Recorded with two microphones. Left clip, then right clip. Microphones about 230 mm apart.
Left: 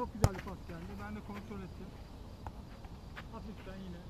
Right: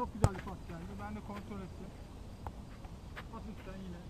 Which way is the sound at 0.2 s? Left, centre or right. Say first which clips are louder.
Even; left.